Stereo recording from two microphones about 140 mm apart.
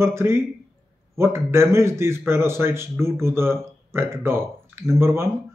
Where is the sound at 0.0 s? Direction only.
15° right (ahead or behind).